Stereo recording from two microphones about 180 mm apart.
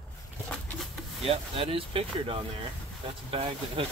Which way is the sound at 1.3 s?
30° right (ahead or behind).